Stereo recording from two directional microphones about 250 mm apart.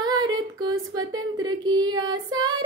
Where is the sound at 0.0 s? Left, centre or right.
Centre.